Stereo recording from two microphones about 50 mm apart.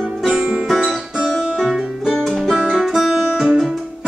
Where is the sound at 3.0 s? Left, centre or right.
Centre.